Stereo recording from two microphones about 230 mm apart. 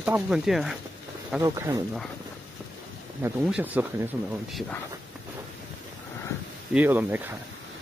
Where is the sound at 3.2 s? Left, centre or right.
Centre.